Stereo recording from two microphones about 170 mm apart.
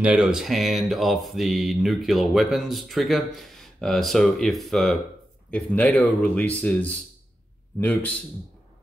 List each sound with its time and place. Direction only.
0.0 s speech: 5° right (ahead or behind)